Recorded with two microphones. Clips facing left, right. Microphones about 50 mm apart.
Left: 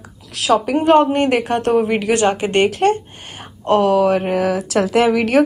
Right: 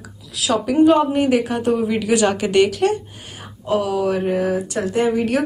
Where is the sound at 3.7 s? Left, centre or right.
Left.